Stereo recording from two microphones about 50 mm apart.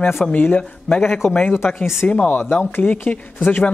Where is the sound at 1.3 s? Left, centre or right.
Left.